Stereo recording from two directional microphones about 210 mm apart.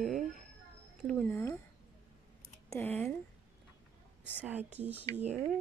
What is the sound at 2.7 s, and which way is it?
Speech, 10° left (ahead or behind).